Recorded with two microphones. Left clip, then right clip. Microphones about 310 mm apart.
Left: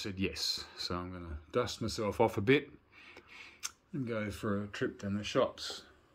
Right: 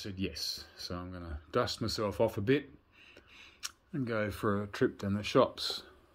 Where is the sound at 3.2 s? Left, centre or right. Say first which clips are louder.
Left 3 dB; centre.